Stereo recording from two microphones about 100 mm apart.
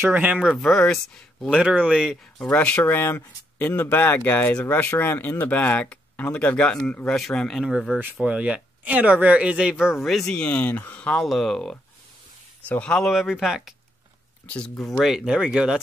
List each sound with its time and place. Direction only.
0.0 s speech: 15° right (ahead or behind)
0.5 s speech: 5° left (ahead or behind)
1.5 s speech: 10° right (ahead or behind)
2.3 s speech: 10° left (ahead or behind)
8.2 s speech: 10° right (ahead or behind); by 13.1 s 10° left (ahead or behind)
13.1 s speech: 5° right (ahead or behind)
14.5 s speech: 5° left (ahead or behind)
15.0 s speech: 10° right (ahead or behind)